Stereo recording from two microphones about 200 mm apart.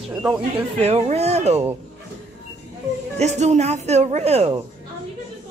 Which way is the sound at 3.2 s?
35° right (ahead or behind).